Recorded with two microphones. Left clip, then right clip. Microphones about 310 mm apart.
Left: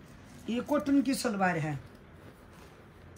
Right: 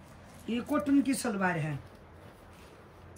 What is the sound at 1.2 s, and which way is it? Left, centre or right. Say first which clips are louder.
Speech: left 2 dB; centre.